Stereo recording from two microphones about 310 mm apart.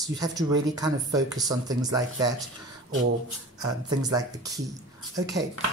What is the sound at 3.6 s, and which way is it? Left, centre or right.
Speech, centre.